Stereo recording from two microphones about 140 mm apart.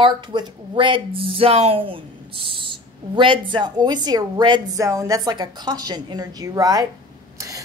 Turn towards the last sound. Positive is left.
turn(degrees=-25)  # may be behind; listen again after turning